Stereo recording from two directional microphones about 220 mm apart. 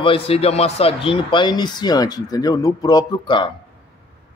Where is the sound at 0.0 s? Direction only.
25° left (ahead or behind).